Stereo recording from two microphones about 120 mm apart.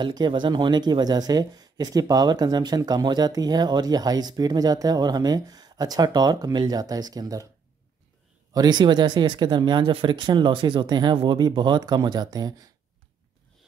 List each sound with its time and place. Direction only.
0.0 s speech: 40° right (ahead or behind)
8.5 s speech: 35° right (ahead or behind)